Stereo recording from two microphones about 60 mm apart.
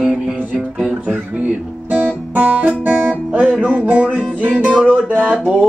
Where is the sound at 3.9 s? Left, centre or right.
Right.